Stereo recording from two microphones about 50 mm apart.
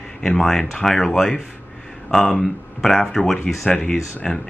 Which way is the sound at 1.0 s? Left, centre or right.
Centre.